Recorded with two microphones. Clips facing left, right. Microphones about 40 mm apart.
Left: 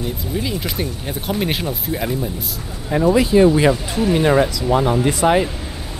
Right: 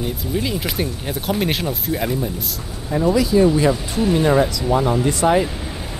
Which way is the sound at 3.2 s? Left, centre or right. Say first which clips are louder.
Left 2 dB; left.